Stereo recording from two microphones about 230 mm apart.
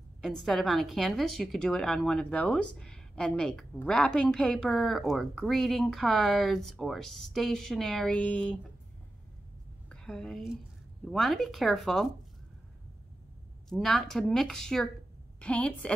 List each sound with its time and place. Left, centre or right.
0.2 s a woman's voice: centre
9.8 s a woman's voice: centre
13.7 s a woman's voice: centre